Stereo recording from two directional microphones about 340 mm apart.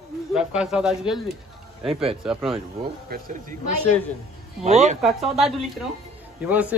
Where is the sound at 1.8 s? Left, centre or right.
Centre.